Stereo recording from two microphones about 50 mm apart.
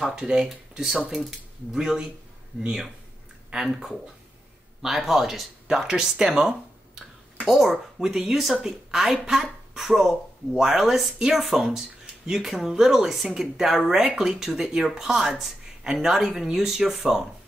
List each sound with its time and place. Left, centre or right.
0.3 s speech: centre
7.4 s speech: centre